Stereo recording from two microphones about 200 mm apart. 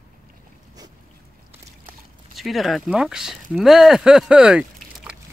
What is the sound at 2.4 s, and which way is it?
Speech, centre (ahead or behind).